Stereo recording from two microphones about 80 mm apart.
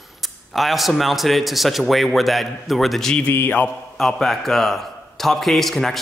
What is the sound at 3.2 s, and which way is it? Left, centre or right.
Speech, left.